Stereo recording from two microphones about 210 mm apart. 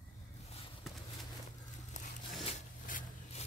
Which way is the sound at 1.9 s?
35° left (ahead or behind).